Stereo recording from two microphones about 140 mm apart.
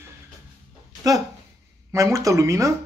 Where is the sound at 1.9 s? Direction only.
20° right (ahead or behind).